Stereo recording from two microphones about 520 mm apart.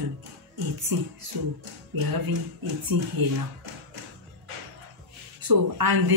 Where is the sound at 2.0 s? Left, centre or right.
Right.